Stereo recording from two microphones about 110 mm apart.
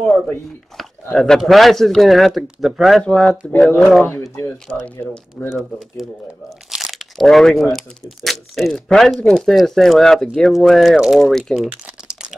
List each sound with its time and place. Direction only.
0.7 s a sound: 5° left (ahead or behind)
1.1 s speech: 5° left (ahead or behind)
3.1 s speech: 10° left (ahead or behind)
6.7 s crumpling: centre (ahead or behind)
7.7 s speech: centre (ahead or behind)
11.8 s crumpling: 5° right (ahead or behind)